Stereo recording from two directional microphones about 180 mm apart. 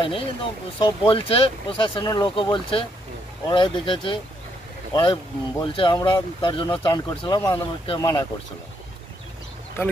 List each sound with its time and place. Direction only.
0.0 s speech: 30° left (ahead or behind)